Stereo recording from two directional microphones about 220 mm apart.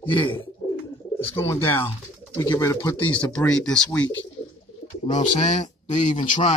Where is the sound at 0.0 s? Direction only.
25° left (ahead or behind).